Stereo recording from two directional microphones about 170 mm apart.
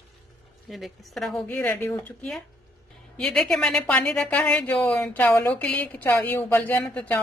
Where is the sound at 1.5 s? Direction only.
15° left (ahead or behind).